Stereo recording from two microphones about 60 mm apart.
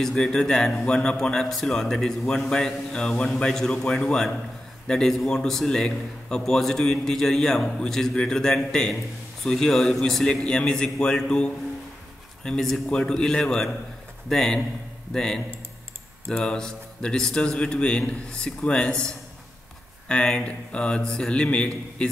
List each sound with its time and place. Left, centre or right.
0.0 s speech: centre